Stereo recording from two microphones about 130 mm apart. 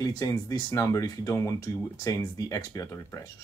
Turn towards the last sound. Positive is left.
turn(degrees=25)  # may be behind; listen again after turning